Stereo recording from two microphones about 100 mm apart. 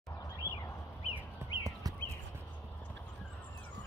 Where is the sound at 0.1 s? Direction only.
35° left (ahead or behind).